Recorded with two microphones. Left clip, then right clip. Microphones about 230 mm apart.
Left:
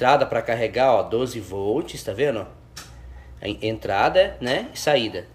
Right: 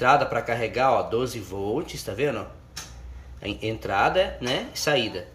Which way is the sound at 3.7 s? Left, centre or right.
Centre.